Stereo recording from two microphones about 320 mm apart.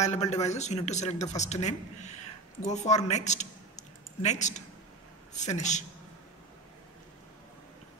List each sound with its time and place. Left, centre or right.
0.0 s speech: left